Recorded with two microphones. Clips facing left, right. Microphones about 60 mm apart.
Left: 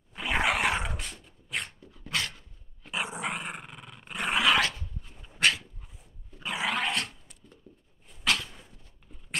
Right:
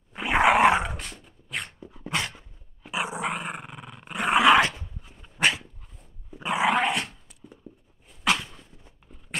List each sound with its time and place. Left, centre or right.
0.1 s roar: right
0.7 s dog: centre
1.8 s dog: right
2.8 s dog: centre
4.4 s dog: right
5.0 s dog: centre; by 6.9 s right
7.1 s a sound: centre
8.2 s dog: centre